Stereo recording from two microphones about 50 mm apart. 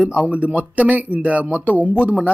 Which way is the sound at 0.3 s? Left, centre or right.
Right.